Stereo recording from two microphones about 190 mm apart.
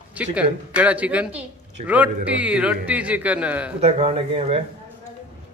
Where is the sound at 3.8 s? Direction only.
30° right (ahead or behind).